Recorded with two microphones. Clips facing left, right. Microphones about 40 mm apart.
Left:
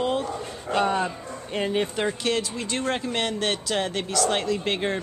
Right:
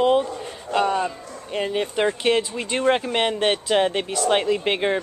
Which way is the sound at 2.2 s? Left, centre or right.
Right.